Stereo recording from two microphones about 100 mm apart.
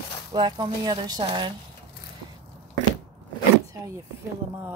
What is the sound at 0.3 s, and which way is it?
Speech, 50° right (ahead or behind).